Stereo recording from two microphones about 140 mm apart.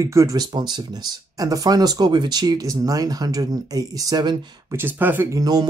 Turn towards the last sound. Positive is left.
turn(degrees=-25)  # may be behind; listen again after turning